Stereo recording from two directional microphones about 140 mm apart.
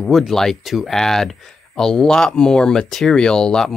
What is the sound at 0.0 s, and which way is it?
Speech, centre (ahead or behind).